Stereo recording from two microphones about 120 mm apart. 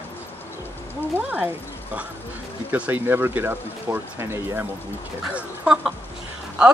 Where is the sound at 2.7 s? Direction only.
15° right (ahead or behind).